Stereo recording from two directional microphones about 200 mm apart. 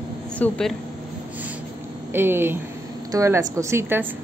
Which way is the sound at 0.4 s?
5° left (ahead or behind).